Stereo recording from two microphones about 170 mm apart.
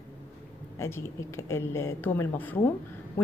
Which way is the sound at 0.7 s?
15° left (ahead or behind).